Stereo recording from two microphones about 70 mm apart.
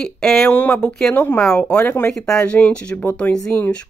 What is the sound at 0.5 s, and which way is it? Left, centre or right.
Speech, left.